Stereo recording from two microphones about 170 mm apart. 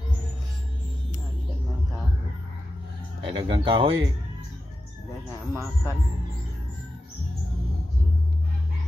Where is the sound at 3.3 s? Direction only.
30° right (ahead or behind).